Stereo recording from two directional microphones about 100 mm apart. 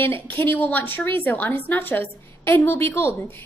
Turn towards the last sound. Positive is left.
turn(degrees=20)  # may be behind; listen again after turning